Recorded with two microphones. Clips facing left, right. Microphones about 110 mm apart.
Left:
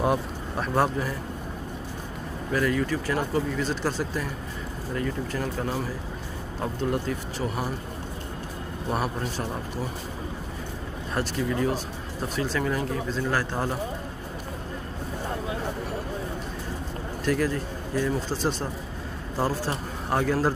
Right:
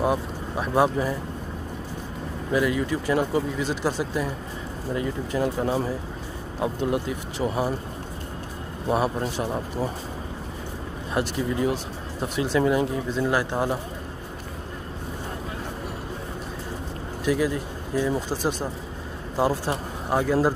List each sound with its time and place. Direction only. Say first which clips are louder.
0.0 s speech: right 1 dB; 5° right (ahead or behind)
2.5 s speech: right 2 dB; 15° right (ahead or behind)
6.6 s speech: right 3 dB; 10° right (ahead or behind)
8.8 s a man's voice: right 5 dB; 20° right (ahead or behind)
11.1 s speech: right 2 dB; 20° right (ahead or behind)
17.2 s speech: right 2 dB; 10° right (ahead or behind)